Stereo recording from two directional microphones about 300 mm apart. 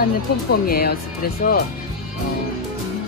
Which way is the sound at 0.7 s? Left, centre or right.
Left.